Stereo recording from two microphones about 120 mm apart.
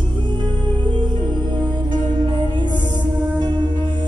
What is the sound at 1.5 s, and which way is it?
Music, 40° right (ahead or behind).